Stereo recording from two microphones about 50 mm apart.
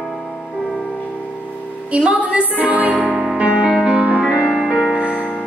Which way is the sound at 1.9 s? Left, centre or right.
Right.